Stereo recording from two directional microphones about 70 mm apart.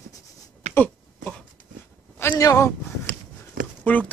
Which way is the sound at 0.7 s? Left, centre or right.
Left.